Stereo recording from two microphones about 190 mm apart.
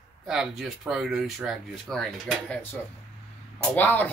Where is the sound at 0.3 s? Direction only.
5° right (ahead or behind).